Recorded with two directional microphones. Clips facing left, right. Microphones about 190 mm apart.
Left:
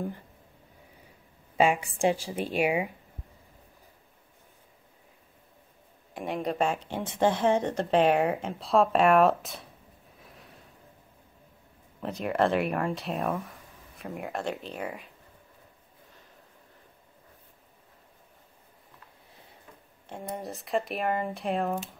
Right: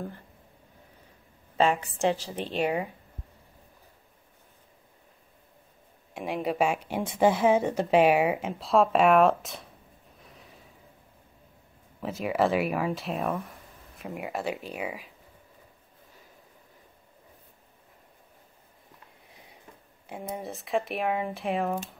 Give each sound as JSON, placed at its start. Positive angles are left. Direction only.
{"t": 1.6, "sound": "a woman's voice", "side_deg": 10}
{"t": 6.1, "sound": "speech", "side_deg": 0}
{"t": 10.2, "sound": "snort", "side_deg": 0}
{"t": 12.0, "sound": "speech", "side_deg": -5}
{"t": 20.1, "sound": "speech", "side_deg": -5}